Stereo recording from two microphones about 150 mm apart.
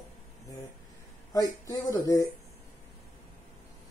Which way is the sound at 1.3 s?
25° left (ahead or behind).